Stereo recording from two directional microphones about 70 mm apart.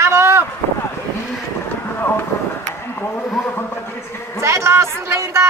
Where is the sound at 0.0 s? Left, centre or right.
Right.